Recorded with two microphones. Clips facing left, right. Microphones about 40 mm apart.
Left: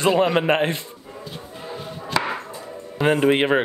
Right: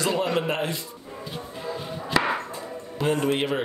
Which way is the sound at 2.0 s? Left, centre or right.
Centre.